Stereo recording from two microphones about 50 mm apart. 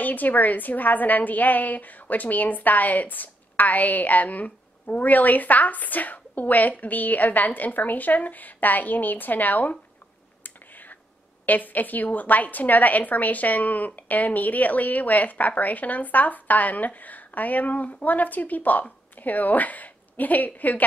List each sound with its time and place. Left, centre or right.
0.0 s a woman's voice: left
10.4 s a sound: left
11.4 s a woman's voice: left